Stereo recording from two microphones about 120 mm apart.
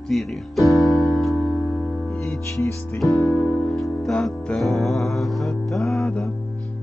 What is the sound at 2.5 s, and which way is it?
Music, 20° left (ahead or behind).